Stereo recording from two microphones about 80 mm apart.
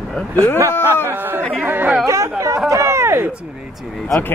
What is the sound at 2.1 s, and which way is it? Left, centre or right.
Speech, right.